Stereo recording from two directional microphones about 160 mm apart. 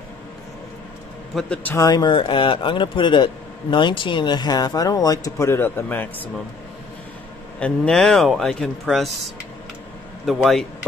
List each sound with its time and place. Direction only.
1.3 s a man's voice: 10° left (ahead or behind)
1.8 s speech: 25° left (ahead or behind)
7.6 s speech: 5° left (ahead or behind)